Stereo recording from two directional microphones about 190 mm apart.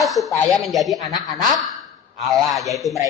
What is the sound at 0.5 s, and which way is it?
Speech, centre (ahead or behind).